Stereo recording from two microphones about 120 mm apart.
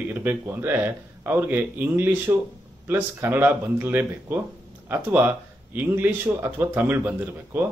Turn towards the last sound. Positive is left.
turn(degrees=-15)  # may be behind; listen again after turning